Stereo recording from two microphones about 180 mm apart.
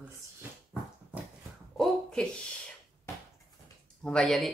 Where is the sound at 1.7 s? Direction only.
5° left (ahead or behind).